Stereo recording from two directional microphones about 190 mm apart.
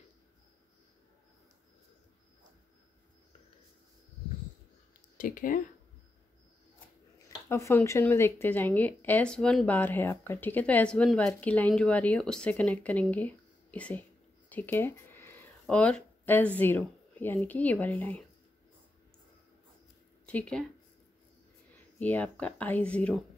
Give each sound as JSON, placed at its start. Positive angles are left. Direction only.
{"t": 5.1, "sound": "speech", "side_deg": 45}
{"t": 7.2, "sound": "speech", "side_deg": 15}
{"t": 14.5, "sound": "a sound", "side_deg": 10}
{"t": 15.6, "sound": "speech", "side_deg": 5}
{"t": 20.2, "sound": "speech", "side_deg": 5}
{"t": 21.9, "sound": "speech", "side_deg": 10}